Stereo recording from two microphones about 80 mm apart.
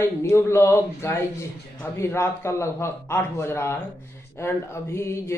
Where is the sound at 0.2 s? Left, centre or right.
Left.